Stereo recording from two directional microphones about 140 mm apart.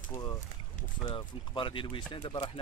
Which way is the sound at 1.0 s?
35° left (ahead or behind).